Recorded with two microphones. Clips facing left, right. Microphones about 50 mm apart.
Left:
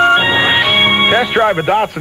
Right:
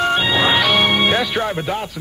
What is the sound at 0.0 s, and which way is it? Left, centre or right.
Speech, left.